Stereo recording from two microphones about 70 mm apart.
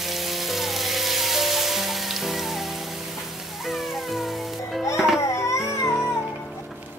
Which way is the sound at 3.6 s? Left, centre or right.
Centre.